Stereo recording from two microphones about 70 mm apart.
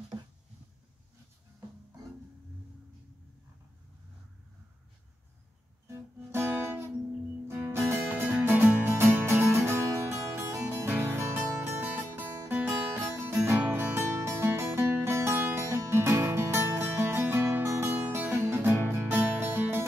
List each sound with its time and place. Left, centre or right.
0.1 s a sound: right
5.9 s guitar: right
7.4 s music: right
8.4 s music: right
12.1 s music: right
12.6 s music: right